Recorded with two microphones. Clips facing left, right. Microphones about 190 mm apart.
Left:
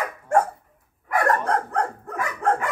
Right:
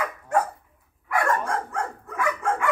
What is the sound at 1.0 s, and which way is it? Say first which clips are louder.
Dog: left 2 dB; 40° left (ahead or behind).